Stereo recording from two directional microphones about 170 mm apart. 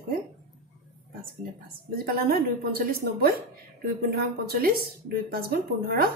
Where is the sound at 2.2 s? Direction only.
60° right (ahead or behind).